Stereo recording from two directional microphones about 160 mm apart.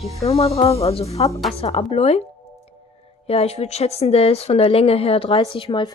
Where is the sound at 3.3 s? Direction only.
40° left (ahead or behind).